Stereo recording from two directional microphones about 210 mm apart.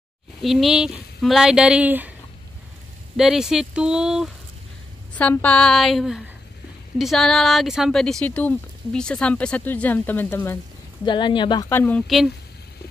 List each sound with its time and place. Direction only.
0.4 s speech: centre (ahead or behind)
3.2 s speech: centre (ahead or behind)
11.1 s speech: 20° left (ahead or behind)
11.7 s speech: 10° left (ahead or behind)